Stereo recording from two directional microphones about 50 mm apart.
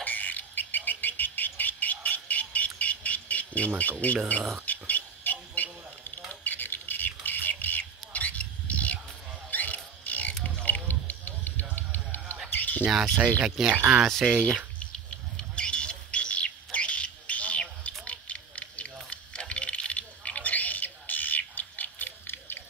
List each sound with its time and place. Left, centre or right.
0.0 s bird: left
4.6 s a sound: left
9.5 s pig: left
10.5 s a sound: left
11.7 s music: left
12.5 s bird: left
12.8 s speech: centre
13.4 s speech: centre
14.0 s speech: centre
15.0 s a sound: left